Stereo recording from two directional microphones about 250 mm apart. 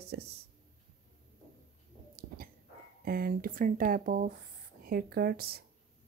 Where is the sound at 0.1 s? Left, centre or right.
Right.